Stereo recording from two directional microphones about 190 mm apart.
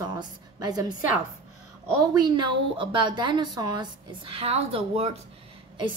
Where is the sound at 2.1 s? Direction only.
20° right (ahead or behind).